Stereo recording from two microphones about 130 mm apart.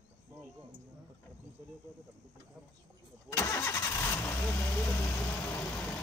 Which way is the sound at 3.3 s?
20° left (ahead or behind).